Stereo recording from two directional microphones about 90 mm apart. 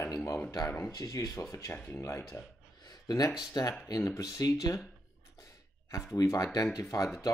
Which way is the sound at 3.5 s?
45° left (ahead or behind).